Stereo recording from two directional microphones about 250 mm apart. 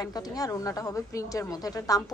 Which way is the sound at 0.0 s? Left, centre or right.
Centre.